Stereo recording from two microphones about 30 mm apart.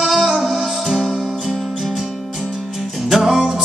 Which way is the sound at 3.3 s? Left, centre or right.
Right.